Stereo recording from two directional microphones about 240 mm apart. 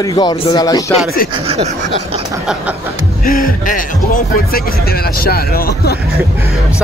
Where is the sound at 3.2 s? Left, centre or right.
Left.